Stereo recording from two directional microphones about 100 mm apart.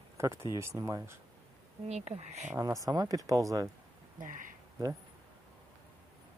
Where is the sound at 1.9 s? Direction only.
90° right.